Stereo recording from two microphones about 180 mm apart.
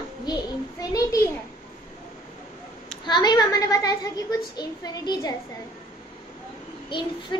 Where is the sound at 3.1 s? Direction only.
25° left (ahead or behind).